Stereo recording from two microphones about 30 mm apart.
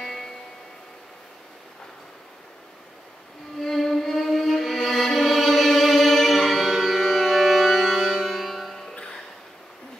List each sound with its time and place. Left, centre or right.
0.0 s music: centre
3.5 s music: centre